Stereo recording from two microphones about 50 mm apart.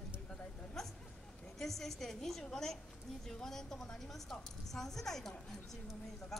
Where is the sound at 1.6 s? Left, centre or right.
Centre.